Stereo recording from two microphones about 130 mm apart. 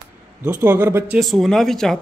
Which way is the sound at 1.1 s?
Centre (ahead or behind).